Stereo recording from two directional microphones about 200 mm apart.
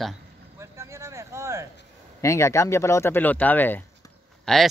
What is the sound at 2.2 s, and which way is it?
Speech, 15° left (ahead or behind).